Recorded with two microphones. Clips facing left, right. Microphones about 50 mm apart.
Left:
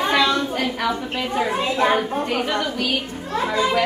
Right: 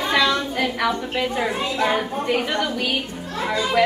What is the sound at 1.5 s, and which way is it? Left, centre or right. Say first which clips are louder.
Speech: left 2 dB; left.